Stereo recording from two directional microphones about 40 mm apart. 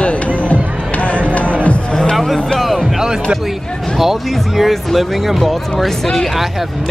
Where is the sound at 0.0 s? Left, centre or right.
Left.